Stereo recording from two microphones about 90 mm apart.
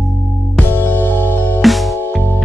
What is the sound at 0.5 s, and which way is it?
Music, 20° left (ahead or behind).